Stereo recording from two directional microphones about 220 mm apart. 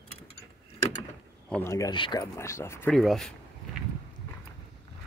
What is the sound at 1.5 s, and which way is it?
Speech, 10° left (ahead or behind).